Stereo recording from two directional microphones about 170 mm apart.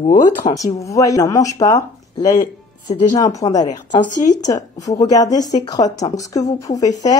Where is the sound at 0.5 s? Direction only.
20° left (ahead or behind).